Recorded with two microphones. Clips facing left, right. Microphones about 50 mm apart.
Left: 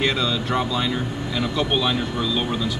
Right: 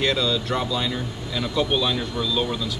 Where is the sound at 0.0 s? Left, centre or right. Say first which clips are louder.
Even; centre.